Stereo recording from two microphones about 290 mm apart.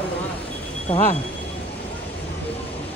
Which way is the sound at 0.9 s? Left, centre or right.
Centre.